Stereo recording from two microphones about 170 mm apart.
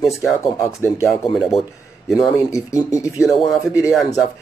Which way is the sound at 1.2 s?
Centre (ahead or behind).